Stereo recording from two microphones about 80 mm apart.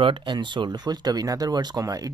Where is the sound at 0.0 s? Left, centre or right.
Right.